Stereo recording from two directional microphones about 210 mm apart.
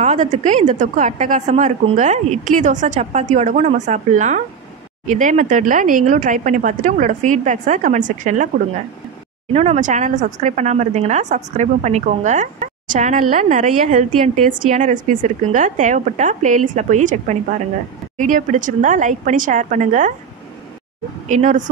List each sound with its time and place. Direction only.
0.0 s speech: 35° right (ahead or behind)
9.5 s speech: 30° right (ahead or behind)
21.3 s speech: 35° right (ahead or behind)